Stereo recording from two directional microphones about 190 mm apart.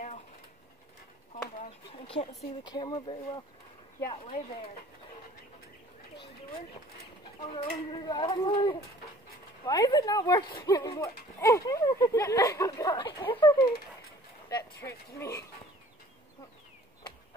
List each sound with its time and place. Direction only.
1.6 s speech: 30° left (ahead or behind)
7.5 s speech: 25° left (ahead or behind)